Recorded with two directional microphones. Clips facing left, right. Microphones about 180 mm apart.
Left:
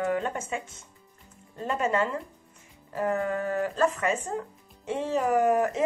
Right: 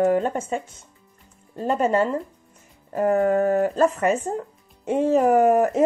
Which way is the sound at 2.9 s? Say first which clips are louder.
Right 8 dB; 50° right (ahead or behind).